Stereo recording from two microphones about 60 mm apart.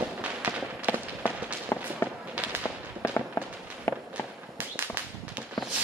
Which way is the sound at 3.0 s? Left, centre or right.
Left.